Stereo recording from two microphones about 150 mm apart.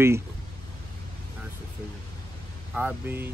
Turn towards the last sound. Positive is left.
turn(degrees=-10)  # may be behind; listen again after turning